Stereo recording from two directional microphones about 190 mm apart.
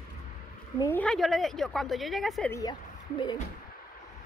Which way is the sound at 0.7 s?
10° left (ahead or behind).